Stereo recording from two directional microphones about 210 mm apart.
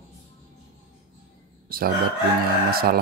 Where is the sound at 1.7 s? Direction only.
45° right (ahead or behind).